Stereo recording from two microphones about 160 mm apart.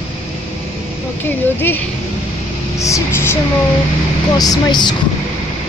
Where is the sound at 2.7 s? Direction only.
20° left (ahead or behind).